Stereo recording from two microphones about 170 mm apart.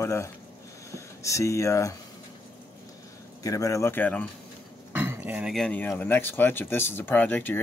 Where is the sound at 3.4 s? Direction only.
20° left (ahead or behind).